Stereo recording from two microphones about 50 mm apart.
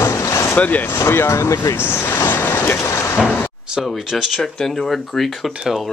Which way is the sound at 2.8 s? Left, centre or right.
Left.